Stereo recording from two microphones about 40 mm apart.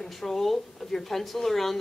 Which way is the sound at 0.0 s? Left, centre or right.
Centre.